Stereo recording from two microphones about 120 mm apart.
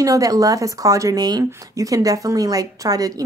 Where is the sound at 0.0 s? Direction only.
30° right (ahead or behind).